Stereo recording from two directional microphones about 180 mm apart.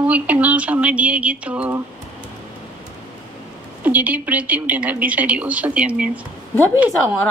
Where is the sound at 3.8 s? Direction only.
10° right (ahead or behind).